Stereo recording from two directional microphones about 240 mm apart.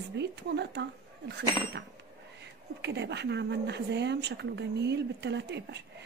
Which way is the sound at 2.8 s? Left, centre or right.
Right.